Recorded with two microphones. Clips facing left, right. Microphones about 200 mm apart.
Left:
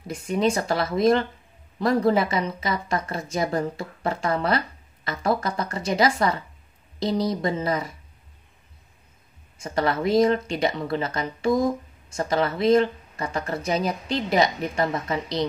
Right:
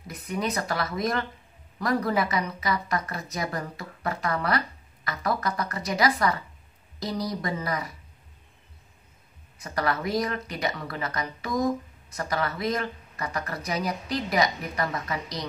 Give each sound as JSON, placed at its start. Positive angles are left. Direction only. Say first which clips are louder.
{"t": 0.0, "sound": "speech", "louder": "left 7 dB", "side_deg": 25}
{"t": 9.6, "sound": "speech", "louder": "left 4 dB", "side_deg": 25}